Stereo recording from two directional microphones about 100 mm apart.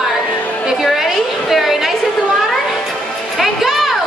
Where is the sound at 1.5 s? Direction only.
5° right (ahead or behind).